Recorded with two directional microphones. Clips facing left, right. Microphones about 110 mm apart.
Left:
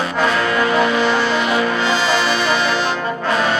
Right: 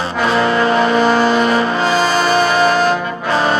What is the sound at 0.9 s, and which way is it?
Music, 40° right (ahead or behind).